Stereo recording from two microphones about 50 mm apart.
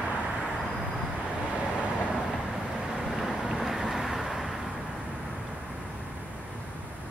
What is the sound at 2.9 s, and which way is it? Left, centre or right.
Vehicle, centre.